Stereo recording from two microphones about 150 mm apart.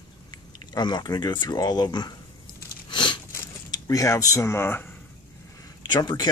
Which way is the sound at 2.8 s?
30° left (ahead or behind).